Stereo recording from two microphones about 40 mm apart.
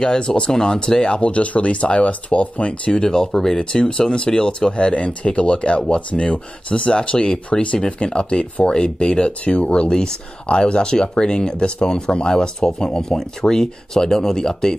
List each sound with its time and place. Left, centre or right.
0.0 s speech: centre
2.9 s speech: centre